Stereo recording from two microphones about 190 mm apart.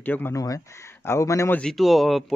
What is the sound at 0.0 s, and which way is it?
Speech, 10° left (ahead or behind).